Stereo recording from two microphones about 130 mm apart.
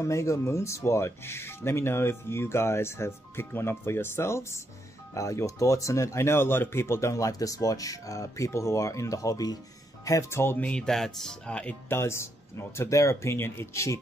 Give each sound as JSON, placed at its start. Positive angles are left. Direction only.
{"t": 0.0, "sound": "speech", "side_deg": 25}
{"t": 11.9, "sound": "speech", "side_deg": 20}